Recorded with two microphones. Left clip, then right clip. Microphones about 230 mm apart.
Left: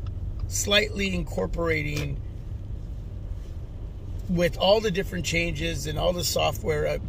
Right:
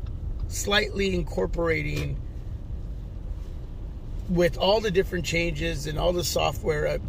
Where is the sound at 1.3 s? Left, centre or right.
Centre.